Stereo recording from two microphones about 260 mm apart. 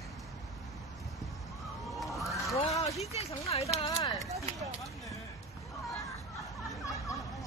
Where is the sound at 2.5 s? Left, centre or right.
Left.